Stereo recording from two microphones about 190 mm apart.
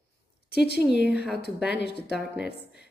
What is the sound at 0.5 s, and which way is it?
A woman's voice, 60° left (ahead or behind).